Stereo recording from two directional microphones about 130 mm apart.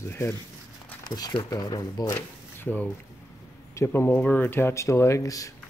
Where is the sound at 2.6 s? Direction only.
15° left (ahead or behind).